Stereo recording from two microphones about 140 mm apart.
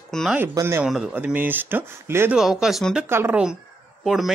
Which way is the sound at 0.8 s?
5° right (ahead or behind).